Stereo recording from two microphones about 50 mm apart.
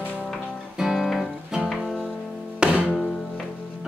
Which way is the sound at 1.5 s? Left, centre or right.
Centre.